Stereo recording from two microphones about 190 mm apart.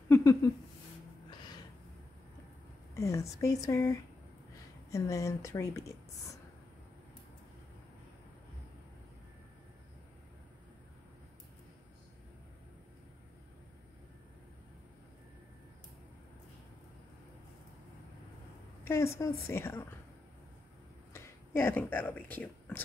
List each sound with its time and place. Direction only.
0.1 s a sound: 15° left (ahead or behind)
2.9 s a woman's voice: 15° left (ahead or behind)
4.9 s a woman's voice: 15° left (ahead or behind)
18.9 s a woman's voice: 15° left (ahead or behind)
21.1 s speech: 10° left (ahead or behind)